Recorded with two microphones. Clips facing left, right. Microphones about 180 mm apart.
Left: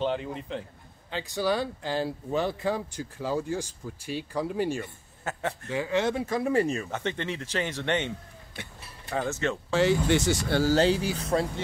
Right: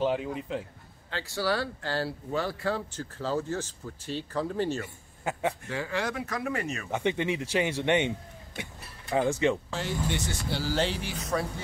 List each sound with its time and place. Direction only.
0.0 s speech: 5° right (ahead or behind)
1.1 s speech: 20° left (ahead or behind)
4.8 s a man's voice: 10° right (ahead or behind)
5.7 s speech: 20° left (ahead or behind)
6.9 s speech: 15° right (ahead or behind)
9.1 s speech: 15° right (ahead or behind)
9.7 s speech: 90° left
10.5 s speech: 45° left (ahead or behind)
11.2 s speech: 25° left (ahead or behind)